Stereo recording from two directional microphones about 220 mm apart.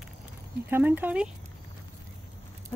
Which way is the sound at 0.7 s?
10° right (ahead or behind).